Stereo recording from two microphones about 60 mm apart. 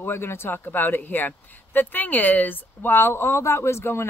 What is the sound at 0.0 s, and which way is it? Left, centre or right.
Speech, left.